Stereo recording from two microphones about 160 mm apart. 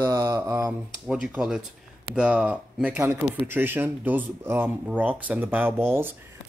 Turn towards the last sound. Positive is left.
turn(degrees=-15)  # may be behind; listen again after turning